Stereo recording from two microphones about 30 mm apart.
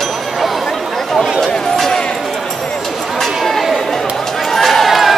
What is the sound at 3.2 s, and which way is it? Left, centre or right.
Chatter, centre.